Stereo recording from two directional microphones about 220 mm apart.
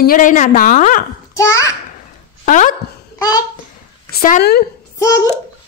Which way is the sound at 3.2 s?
15° left (ahead or behind).